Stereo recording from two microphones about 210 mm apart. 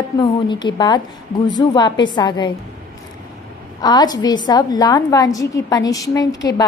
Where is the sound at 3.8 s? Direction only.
20° left (ahead or behind).